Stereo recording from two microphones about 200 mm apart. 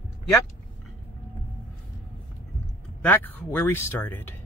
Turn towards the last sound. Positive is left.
turn(degrees=10)  # may be behind; listen again after turning